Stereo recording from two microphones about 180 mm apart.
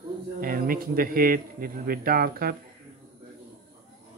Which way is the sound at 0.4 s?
55° right (ahead or behind).